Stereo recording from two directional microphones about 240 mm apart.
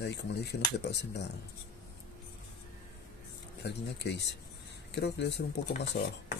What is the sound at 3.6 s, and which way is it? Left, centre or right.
Speech, left.